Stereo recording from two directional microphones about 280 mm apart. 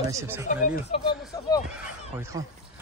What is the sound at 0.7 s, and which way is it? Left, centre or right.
Speech, centre.